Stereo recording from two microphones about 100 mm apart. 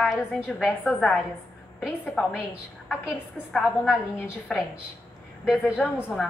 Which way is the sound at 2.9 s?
5° left (ahead or behind).